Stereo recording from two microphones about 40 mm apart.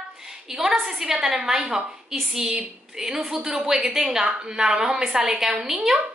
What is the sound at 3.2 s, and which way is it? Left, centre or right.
Speech, centre.